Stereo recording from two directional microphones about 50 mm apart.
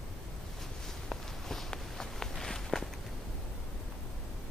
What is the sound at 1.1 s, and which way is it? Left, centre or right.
Walk, centre.